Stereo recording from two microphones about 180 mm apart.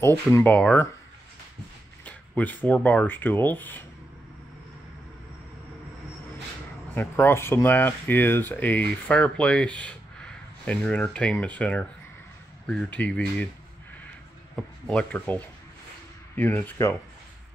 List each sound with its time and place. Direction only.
0.3 s speech: 10° left (ahead or behind)
2.0 s speech: 10° left (ahead or behind)
7.0 s speech: 10° left (ahead or behind)
14.5 s speech: 5° left (ahead or behind)